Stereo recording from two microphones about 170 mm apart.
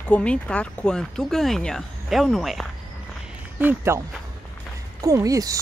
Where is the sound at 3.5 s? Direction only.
15° right (ahead or behind).